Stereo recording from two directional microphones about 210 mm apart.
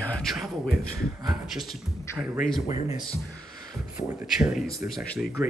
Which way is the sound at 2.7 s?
20° right (ahead or behind).